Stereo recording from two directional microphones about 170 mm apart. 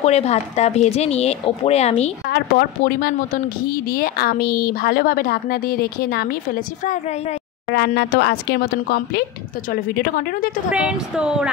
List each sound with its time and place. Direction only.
0.0 s speech: 40° left (ahead or behind)
2.2 s a woman's voice: 65° left (ahead or behind); by 7.3 s 45° left (ahead or behind)
7.7 s speech: 75° left (ahead or behind)
9.7 s a woman's voice: 55° left (ahead or behind)
10.7 s speech: 5° right (ahead or behind)